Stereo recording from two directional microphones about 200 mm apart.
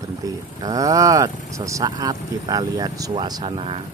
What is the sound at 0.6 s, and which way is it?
Speech, 15° right (ahead or behind).